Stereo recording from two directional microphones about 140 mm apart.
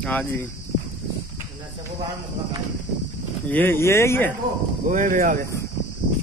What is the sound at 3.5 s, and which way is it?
Speech, 15° left (ahead or behind).